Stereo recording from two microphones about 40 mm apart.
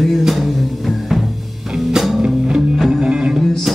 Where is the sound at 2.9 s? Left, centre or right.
Right.